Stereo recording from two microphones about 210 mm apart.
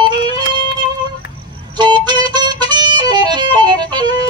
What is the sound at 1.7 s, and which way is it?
Music, 20° right (ahead or behind).